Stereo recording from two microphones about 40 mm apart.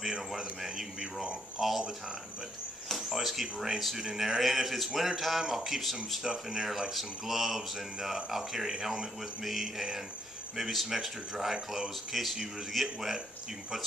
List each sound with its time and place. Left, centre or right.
0.4 s speech: centre
3.0 s speech: centre
6.2 s speech: centre
6.9 s speech: centre